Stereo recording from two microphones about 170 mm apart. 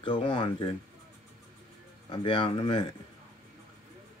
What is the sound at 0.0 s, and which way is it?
Speech, 30° left (ahead or behind).